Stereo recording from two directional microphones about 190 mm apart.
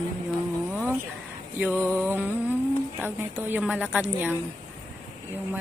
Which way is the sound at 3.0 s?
10° right (ahead or behind).